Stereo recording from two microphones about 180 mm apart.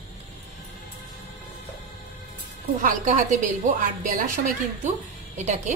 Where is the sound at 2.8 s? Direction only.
45° right (ahead or behind).